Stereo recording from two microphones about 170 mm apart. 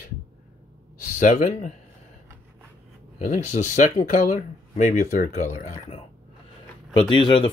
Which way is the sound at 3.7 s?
45° left (ahead or behind).